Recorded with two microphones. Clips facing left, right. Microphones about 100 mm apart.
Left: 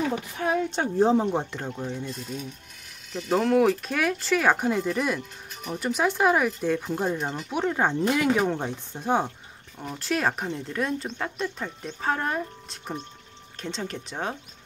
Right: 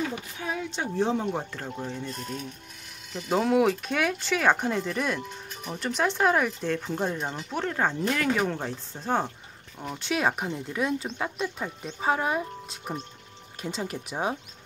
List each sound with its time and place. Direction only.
0.4 s speech: 50° left (ahead or behind)
1.1 s speech: 30° left (ahead or behind)
1.8 s speech: 10° left (ahead or behind)
9.8 s speech: centre (ahead or behind)